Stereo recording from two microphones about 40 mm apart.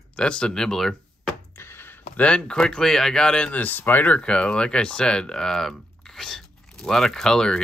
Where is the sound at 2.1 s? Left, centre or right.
Left.